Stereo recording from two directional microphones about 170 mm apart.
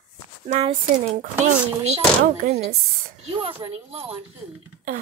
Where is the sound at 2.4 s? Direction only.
40° right (ahead or behind).